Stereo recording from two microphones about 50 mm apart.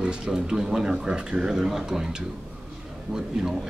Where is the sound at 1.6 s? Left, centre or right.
Centre.